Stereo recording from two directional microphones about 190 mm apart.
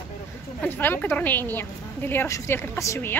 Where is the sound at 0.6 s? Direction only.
10° left (ahead or behind).